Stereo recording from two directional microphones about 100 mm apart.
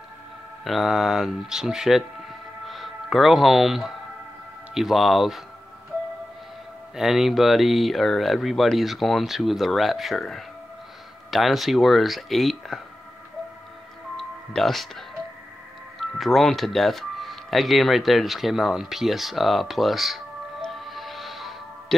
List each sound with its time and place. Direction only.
0.7 s speech: centre (ahead or behind)
7.0 s speech: 5° right (ahead or behind)
14.1 s music: centre (ahead or behind)
16.0 s speech: centre (ahead or behind)
20.6 s music: centre (ahead or behind)